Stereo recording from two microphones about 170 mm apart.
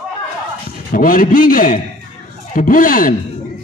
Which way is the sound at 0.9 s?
55° left (ahead or behind).